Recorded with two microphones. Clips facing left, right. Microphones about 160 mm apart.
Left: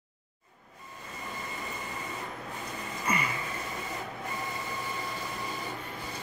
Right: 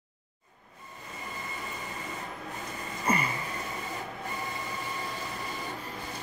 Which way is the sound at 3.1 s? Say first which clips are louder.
Right 3 dB; 30° right (ahead or behind).